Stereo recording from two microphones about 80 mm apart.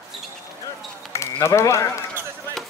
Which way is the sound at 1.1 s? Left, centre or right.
Left.